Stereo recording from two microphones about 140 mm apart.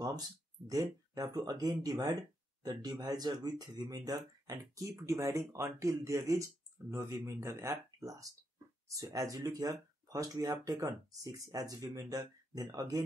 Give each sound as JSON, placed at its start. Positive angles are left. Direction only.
{"t": 0.7, "sound": "speech", "side_deg": -25}